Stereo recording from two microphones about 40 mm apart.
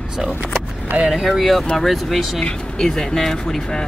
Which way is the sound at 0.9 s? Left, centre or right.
Right.